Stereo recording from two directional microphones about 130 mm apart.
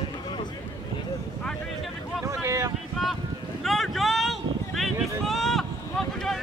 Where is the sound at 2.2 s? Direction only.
20° right (ahead or behind).